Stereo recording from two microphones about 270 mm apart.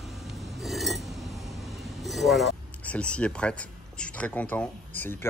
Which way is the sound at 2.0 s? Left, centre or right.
Centre.